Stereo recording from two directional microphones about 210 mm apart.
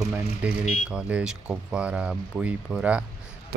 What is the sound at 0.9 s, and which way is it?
Speech, 5° right (ahead or behind).